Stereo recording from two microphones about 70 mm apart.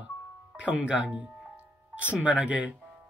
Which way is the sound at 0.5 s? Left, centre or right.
Centre.